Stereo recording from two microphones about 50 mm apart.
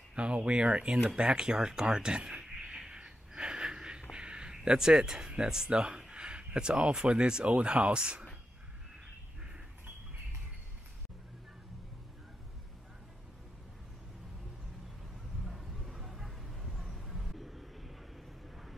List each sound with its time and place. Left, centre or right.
0.1 s speech: right
1.0 s a sound: centre
4.1 s speech: centre
15.4 s vehicle: centre